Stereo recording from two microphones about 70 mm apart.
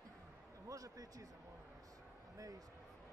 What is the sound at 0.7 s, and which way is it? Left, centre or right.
Speech, right.